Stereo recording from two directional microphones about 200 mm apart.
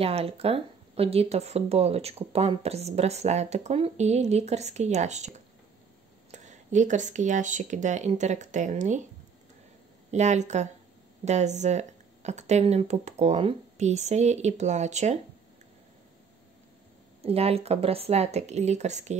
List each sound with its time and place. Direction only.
0.0 s speech: 30° right (ahead or behind)
10.1 s speech: 35° right (ahead or behind)
17.2 s speech: 30° right (ahead or behind)